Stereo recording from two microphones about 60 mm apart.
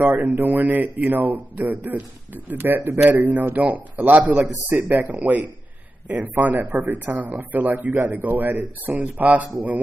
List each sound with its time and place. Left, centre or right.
0.0 s speech: right